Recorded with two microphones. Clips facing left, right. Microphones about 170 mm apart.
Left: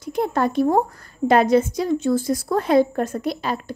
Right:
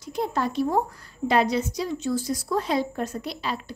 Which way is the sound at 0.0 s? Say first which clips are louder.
Left 5 dB; 55° left (ahead or behind).